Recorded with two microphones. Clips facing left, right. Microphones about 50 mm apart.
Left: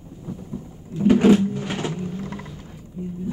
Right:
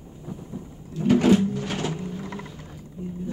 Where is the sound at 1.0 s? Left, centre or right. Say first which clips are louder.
Left 3 dB; centre.